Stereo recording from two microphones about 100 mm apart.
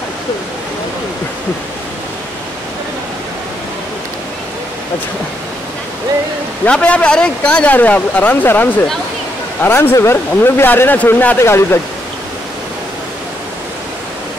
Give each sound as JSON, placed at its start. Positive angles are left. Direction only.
{"t": 6.6, "sound": "speech", "side_deg": 10}